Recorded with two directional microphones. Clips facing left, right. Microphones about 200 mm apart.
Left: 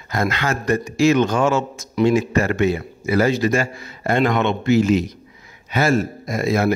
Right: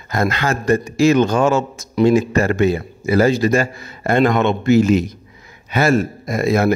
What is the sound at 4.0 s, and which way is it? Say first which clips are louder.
Speech: right 3 dB; 50° right (ahead or behind).